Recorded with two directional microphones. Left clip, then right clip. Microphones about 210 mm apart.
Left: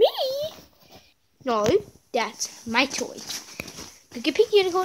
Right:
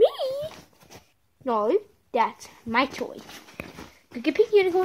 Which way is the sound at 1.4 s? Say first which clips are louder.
Left 2 dB; 10° right (ahead or behind).